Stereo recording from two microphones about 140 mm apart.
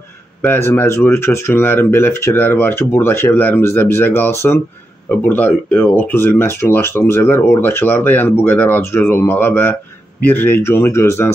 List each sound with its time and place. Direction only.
0.5 s speech: 15° left (ahead or behind)